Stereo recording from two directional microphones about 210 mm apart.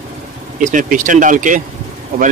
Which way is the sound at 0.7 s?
40° right (ahead or behind).